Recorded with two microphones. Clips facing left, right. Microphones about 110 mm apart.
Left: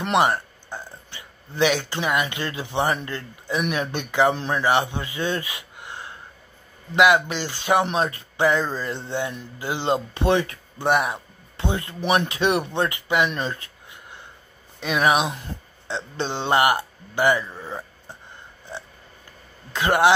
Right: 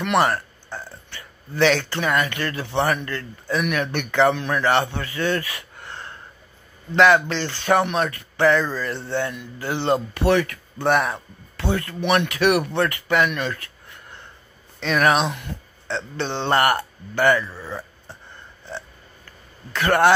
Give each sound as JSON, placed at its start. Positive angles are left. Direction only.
{"t": 0.2, "sound": "a man's voice", "side_deg": 15}
{"t": 12.0, "sound": "speech", "side_deg": 35}
{"t": 12.3, "sound": "speech", "side_deg": 20}
{"t": 13.3, "sound": "a sound", "side_deg": 25}
{"t": 14.8, "sound": "a man's voice", "side_deg": 10}
{"t": 19.7, "sound": "a man's voice", "side_deg": 15}